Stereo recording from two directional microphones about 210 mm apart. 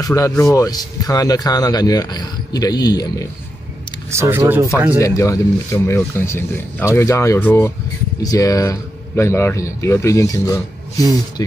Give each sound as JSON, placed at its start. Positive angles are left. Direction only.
{"t": 0.0, "sound": "speech", "side_deg": 15}
{"t": 4.1, "sound": "speech", "side_deg": -15}
{"t": 4.9, "sound": "speech", "side_deg": 15}